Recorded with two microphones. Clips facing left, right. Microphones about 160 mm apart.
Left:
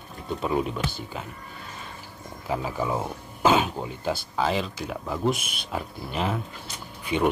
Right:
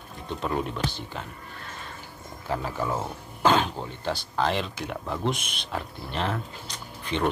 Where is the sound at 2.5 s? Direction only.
10° left (ahead or behind).